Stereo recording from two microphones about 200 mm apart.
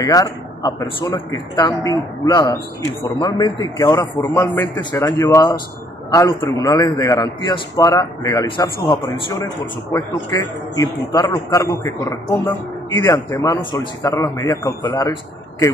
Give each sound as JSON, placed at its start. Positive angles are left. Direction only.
{"t": 0.0, "sound": "a man's voice", "side_deg": 15}